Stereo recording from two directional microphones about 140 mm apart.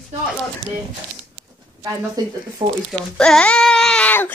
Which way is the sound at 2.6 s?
35° right (ahead or behind).